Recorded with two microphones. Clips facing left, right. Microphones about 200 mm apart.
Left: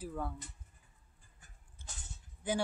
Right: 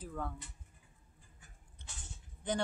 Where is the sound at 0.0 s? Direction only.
10° left (ahead or behind).